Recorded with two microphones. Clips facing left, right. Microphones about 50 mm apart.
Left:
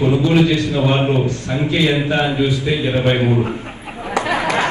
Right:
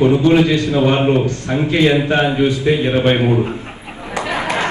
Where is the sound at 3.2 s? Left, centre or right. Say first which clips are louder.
Right 1 dB; right.